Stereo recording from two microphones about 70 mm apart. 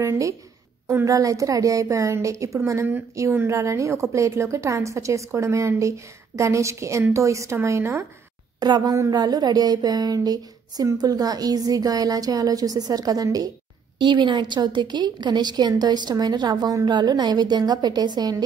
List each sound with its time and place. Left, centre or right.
0.0 s a woman's voice: right
8.5 s a woman's voice: right
14.1 s a woman's voice: right